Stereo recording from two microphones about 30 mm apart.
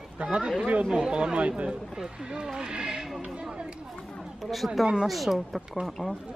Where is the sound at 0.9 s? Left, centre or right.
Right.